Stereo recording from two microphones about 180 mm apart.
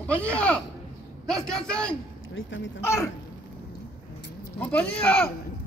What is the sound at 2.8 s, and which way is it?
Speech, 15° left (ahead or behind).